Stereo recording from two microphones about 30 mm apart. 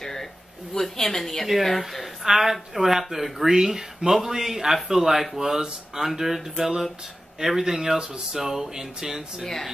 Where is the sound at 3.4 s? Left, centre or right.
Centre.